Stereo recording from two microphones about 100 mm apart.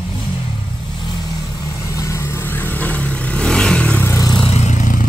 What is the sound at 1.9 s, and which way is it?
Vehicle, 30° left (ahead or behind).